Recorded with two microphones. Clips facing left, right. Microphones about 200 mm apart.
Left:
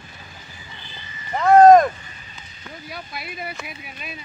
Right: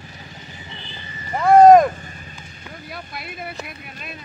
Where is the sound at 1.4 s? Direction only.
10° right (ahead or behind).